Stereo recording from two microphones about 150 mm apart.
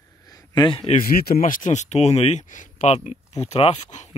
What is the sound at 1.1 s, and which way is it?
Speech, 90° left.